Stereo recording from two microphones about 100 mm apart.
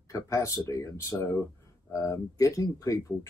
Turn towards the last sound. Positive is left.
turn(degrees=30)  # may be behind; listen again after turning